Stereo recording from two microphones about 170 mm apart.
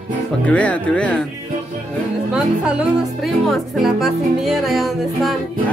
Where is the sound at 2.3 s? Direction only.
5° right (ahead or behind).